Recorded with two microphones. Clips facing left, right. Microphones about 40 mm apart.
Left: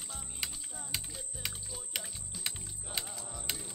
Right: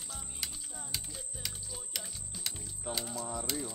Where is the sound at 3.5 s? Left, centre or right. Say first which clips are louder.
Right 1 dB; left.